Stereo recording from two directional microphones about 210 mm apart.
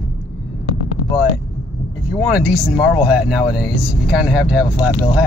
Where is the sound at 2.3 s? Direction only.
5° right (ahead or behind).